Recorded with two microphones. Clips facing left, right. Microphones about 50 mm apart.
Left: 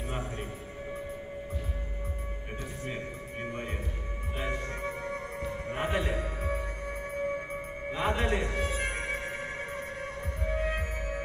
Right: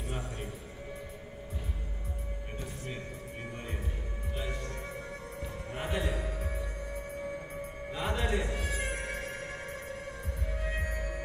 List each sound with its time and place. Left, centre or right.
4.4 s music: left
10.4 s music: left